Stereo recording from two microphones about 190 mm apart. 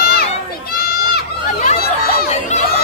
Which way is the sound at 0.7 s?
55° left (ahead or behind).